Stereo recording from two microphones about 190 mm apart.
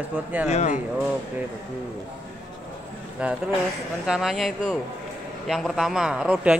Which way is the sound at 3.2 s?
5° right (ahead or behind).